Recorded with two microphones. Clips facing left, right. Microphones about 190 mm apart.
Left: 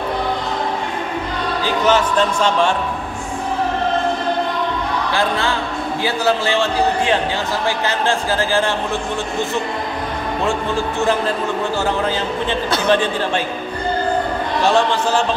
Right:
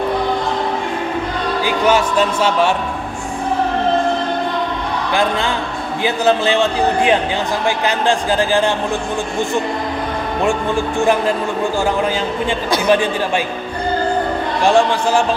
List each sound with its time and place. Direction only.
1.7 s a man's voice: 10° right (ahead or behind)
6.0 s a man's voice: 20° right (ahead or behind)
12.7 s a man's voice: 10° right (ahead or behind)
14.6 s a man's voice: 10° right (ahead or behind)